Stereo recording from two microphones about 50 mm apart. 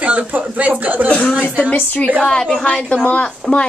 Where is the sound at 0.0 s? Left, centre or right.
Right.